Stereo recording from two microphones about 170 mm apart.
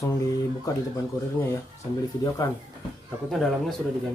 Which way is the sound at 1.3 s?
15° left (ahead or behind).